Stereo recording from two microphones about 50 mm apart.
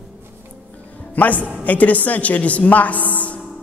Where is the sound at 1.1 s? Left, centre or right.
Left.